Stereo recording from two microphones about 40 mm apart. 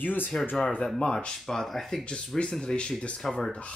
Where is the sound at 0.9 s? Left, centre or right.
Centre.